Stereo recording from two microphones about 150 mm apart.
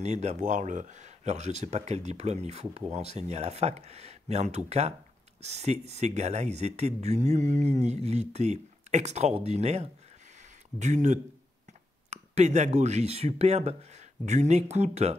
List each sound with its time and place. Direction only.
0.0 s speech: 50° right (ahead or behind)